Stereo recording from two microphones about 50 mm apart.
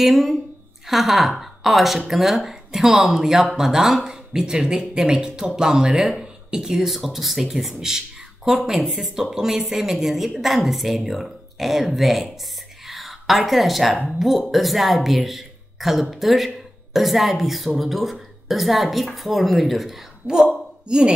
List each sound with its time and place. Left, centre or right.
0.0 s speech: centre
12.8 s a sound: centre
14.5 s a woman's voice: centre
20.8 s speech: centre